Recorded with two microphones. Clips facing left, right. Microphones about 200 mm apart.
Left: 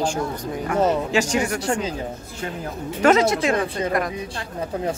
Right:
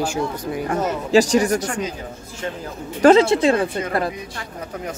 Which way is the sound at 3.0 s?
30° right (ahead or behind).